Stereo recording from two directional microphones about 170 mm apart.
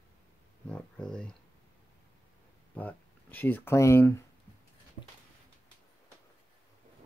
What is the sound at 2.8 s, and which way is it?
Speech, 10° left (ahead or behind).